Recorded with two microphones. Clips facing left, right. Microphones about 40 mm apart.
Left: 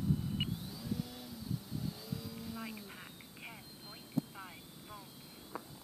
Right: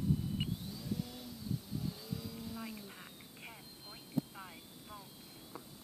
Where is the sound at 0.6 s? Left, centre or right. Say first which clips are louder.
Even; centre.